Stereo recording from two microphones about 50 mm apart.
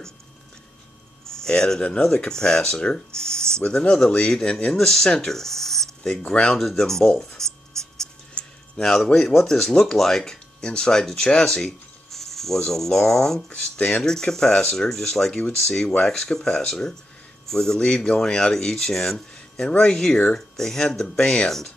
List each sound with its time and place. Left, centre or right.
1.2 s a sound: centre
1.8 s speech: centre
6.6 s writing: centre
8.4 s a sound: left
8.8 s speech: centre
13.5 s speech: left
14.0 s a man's voice: centre
17.7 s speech: centre